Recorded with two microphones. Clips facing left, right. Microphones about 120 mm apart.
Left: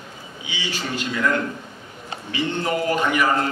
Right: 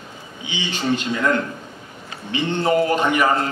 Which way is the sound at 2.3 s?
30° right (ahead or behind).